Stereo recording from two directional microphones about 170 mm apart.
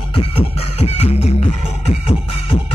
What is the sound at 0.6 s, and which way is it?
Music, 35° left (ahead or behind).